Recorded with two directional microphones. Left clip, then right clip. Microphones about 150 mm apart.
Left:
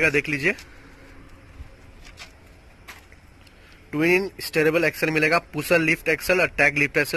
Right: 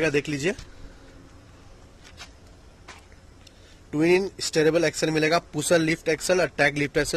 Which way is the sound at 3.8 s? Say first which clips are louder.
Left 1 dB; 20° right (ahead or behind).